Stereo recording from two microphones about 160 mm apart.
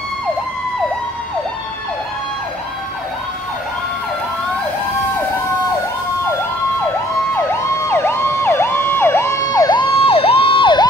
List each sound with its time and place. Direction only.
7.8 s emergency vehicle: 15° left (ahead or behind)